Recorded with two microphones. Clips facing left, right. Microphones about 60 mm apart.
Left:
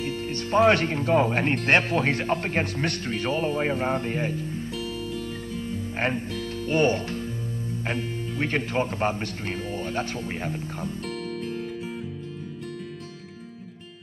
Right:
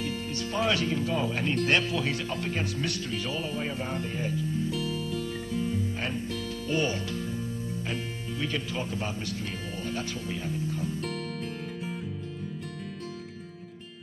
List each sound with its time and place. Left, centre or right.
0.0 s speech: left
4.6 s music: centre
5.9 s speech: left